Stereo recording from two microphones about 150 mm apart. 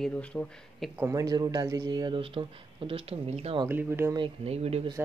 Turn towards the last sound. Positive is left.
turn(degrees=-40)  # may be behind; listen again after turning